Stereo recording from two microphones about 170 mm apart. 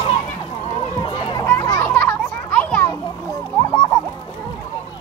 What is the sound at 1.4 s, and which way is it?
Children playing, 15° left (ahead or behind).